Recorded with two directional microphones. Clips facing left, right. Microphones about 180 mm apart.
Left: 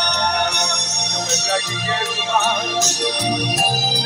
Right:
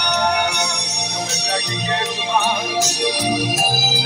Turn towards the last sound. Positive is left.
turn(degrees=-5)  # may be behind; listen again after turning